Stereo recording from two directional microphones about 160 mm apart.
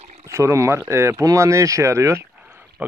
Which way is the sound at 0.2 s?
20° right (ahead or behind).